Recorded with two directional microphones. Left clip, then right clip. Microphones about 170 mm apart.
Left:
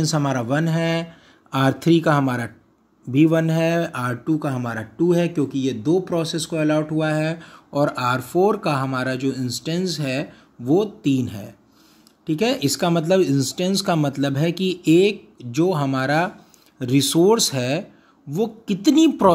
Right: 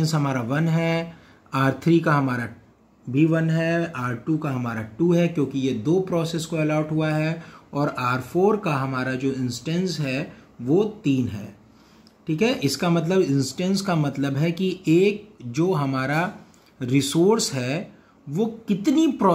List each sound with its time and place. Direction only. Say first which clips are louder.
0.0 s speech: left 3 dB; 35° left (ahead or behind)